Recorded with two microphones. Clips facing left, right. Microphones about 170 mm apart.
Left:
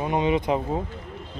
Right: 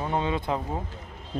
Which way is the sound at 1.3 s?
50° right (ahead or behind).